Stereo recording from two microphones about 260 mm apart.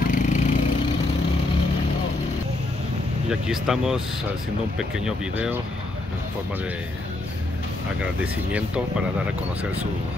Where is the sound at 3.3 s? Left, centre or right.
Centre.